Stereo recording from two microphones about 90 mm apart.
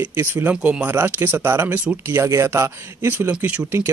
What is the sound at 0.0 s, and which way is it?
Speech, 25° right (ahead or behind).